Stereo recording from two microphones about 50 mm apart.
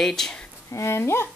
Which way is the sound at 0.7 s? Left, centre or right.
Left.